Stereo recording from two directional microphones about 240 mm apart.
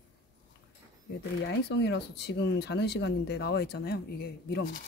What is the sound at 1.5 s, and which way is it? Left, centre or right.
Speech, left.